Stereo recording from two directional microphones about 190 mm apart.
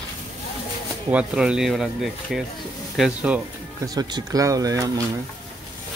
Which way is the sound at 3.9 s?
20° right (ahead or behind).